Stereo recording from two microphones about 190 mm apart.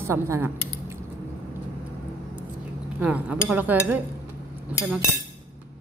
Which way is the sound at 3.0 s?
5° right (ahead or behind).